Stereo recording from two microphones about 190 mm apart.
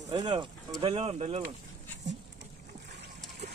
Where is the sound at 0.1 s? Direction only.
20° right (ahead or behind).